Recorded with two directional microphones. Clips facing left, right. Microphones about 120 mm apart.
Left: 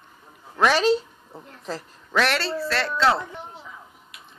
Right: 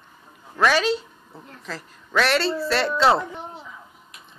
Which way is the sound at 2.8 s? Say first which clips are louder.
Right 3 dB; 25° right (ahead or behind).